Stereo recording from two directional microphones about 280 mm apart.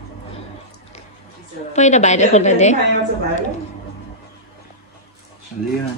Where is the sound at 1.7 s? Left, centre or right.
Left.